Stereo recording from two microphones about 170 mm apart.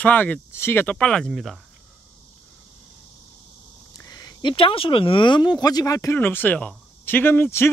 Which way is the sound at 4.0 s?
20° left (ahead or behind).